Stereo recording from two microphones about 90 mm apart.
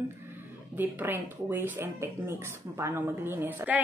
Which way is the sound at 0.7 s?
20° right (ahead or behind).